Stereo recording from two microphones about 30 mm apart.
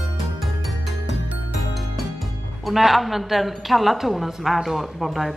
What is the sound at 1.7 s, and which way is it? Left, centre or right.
Music, centre.